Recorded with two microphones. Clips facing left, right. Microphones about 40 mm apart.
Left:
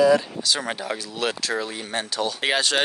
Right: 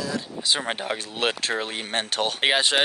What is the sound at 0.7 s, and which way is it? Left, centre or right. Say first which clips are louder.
Speech: even; right.